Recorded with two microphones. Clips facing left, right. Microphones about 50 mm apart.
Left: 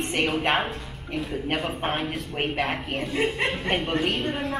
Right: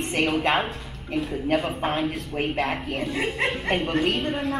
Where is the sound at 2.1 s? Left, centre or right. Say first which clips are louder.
Right 1 dB; left.